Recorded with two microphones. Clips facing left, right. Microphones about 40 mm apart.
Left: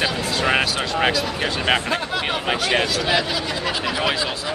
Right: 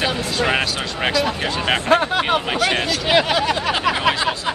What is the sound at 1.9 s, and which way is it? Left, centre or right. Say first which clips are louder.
Speech: right 7 dB; right.